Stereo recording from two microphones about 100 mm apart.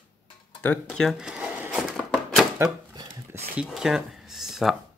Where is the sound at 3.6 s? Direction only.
5° right (ahead or behind).